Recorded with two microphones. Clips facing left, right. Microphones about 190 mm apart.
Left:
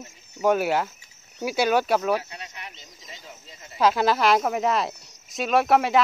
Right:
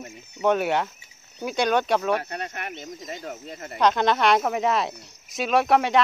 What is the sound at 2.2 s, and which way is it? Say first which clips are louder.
Speech: right 8 dB; 60° right (ahead or behind).